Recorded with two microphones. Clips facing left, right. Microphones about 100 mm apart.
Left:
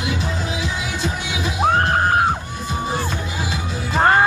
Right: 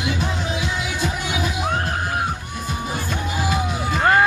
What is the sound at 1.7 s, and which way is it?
Music, 55° left (ahead or behind).